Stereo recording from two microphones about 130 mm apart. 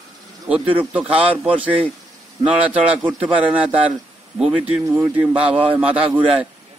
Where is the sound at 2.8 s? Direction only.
10° right (ahead or behind).